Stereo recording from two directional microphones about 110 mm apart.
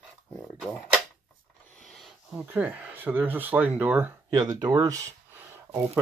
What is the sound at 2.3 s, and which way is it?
Speech, 15° right (ahead or behind).